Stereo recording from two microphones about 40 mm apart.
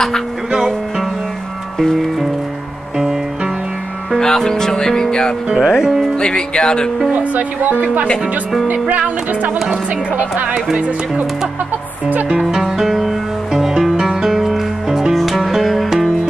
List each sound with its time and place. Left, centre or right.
4.2 s music: centre
5.6 s music: centre
6.1 s music: centre
7.1 s speech: right
12.3 s music: centre
12.7 s music: centre